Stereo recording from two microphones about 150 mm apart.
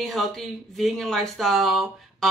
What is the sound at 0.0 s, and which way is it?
Speech, centre (ahead or behind).